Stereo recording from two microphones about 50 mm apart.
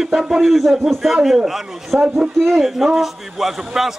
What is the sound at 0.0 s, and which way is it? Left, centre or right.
Speech, centre.